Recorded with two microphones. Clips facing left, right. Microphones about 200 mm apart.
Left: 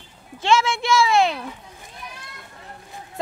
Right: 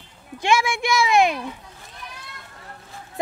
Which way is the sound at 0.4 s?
15° right (ahead or behind).